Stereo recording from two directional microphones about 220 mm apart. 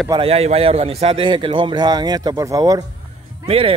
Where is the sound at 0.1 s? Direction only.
25° right (ahead or behind).